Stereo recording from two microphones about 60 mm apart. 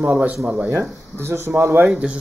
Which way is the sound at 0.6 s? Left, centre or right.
Right.